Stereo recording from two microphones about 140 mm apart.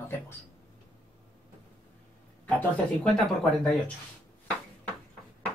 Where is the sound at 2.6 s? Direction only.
5° left (ahead or behind).